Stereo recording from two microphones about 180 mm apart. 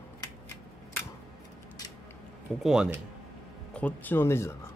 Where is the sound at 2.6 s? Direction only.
5° right (ahead or behind).